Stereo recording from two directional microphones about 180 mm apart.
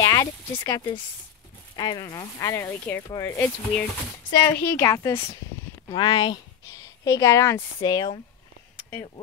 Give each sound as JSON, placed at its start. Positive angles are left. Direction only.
{"t": 0.0, "sound": "speech", "side_deg": 15}